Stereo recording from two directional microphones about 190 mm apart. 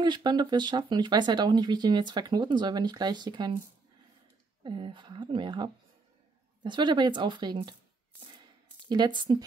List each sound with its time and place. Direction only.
0.0 s speech: 25° right (ahead or behind)
4.6 s speech: 25° right (ahead or behind)
8.8 s speech: 25° right (ahead or behind)